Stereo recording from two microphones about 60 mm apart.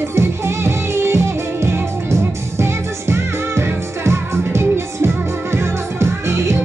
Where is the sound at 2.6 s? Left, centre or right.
Right.